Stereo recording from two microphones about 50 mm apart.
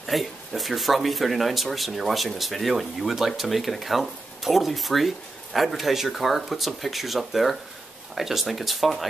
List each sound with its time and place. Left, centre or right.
0.0 s speech: centre